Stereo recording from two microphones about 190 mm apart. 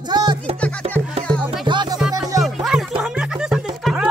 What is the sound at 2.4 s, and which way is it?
Music, centre (ahead or behind).